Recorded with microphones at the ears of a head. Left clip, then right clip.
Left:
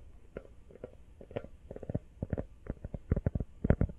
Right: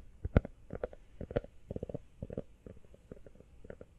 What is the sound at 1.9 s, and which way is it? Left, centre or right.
Stomach rumble, left.